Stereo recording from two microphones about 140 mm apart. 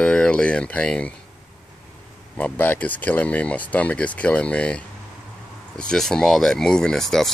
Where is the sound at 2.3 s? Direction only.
10° left (ahead or behind).